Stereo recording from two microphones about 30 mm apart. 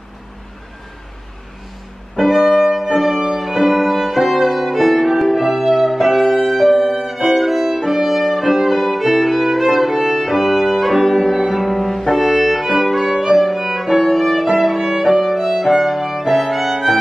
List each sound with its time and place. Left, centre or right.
2.1 s music: centre
3.3 s violin: centre
6.3 s music: centre
7.2 s violin: centre
10.2 s music: centre
11.7 s music: centre
12.2 s music: centre
13.1 s violin: centre
14.1 s music: centre
14.5 s violin: centre